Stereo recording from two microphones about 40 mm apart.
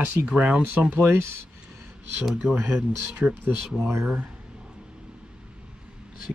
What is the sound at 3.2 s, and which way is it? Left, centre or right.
Speech, right.